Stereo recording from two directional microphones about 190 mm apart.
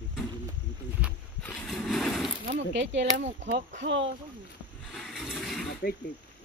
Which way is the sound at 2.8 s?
70° right (ahead or behind).